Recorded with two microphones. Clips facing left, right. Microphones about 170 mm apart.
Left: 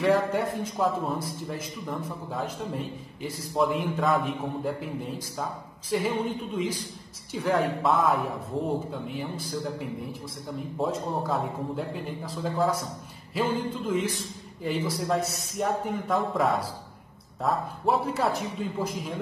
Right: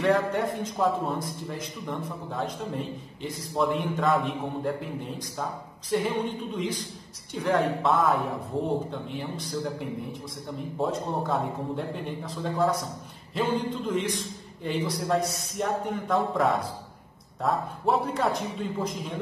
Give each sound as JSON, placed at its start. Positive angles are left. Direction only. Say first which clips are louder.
{"t": 0.0, "sound": "a man's voice", "louder": "even", "side_deg": 0}
{"t": 5.9, "sound": "a man's voice", "louder": "even", "side_deg": 5}